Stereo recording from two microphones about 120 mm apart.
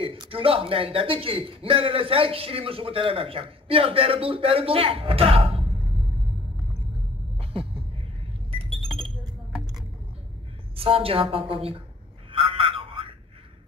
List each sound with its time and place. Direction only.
0.0 s a man's voice: 50° right (ahead or behind)
7.3 s a sound: 50° right (ahead or behind)
8.6 s chink: centre (ahead or behind)
10.8 s a man's voice: 50° right (ahead or behind)
12.3 s telephone: 50° right (ahead or behind)